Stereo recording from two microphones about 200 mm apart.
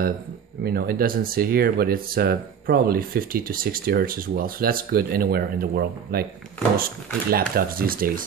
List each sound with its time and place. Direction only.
0.7 s speech: 50° right (ahead or behind)
7.2 s speech: 50° right (ahead or behind)